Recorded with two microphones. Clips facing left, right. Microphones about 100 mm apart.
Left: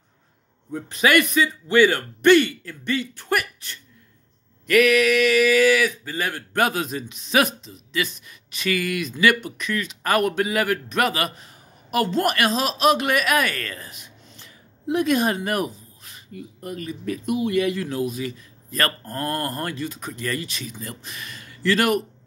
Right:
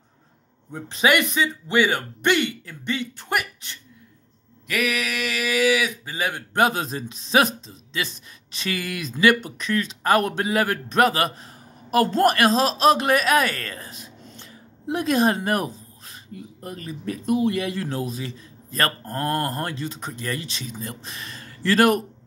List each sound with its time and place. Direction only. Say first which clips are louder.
0.7 s speech: even; 25° right (ahead or behind)
4.6 s speech: left 9 dB; 5° right (ahead or behind); by 22.0 s 35° right (ahead or behind)